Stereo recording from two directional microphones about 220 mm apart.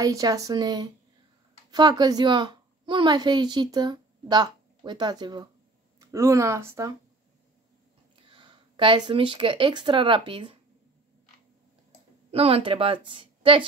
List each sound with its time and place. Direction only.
0.0 s a woman's voice: 15° right (ahead or behind)
8.2 s speech: 20° right (ahead or behind)
12.3 s a woman's voice: 25° right (ahead or behind)